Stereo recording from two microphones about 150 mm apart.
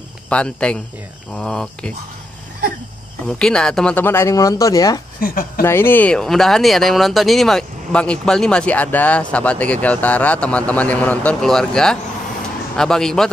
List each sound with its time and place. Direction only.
0.3 s speech: 5° left (ahead or behind)
3.3 s speech: 5° left (ahead or behind); by 5.0 s 25° left (ahead or behind)
5.2 s speech: 70° left (ahead or behind)
5.6 s speech: 15° left (ahead or behind)